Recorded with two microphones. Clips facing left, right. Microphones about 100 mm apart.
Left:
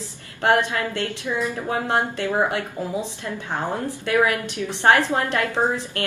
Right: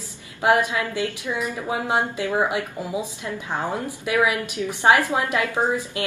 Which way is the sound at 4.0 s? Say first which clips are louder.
Left 1 dB; 10° right (ahead or behind).